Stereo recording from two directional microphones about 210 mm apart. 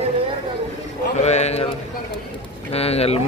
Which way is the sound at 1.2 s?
30° left (ahead or behind).